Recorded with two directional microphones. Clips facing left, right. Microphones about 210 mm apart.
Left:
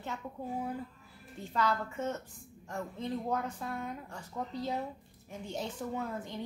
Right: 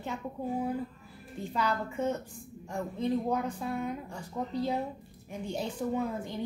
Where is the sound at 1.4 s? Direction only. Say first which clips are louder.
Right 1 dB; 15° right (ahead or behind).